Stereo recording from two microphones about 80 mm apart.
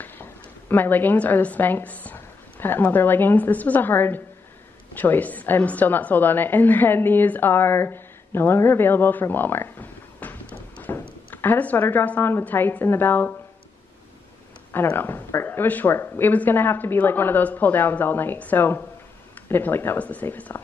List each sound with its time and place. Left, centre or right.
0.0 s a woman's voice: left
14.7 s speech: left